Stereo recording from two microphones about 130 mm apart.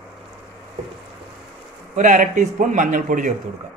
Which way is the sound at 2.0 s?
75° right (ahead or behind).